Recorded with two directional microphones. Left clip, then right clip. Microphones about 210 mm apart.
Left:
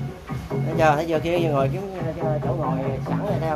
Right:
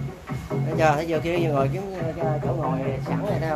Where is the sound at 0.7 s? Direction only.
15° left (ahead or behind).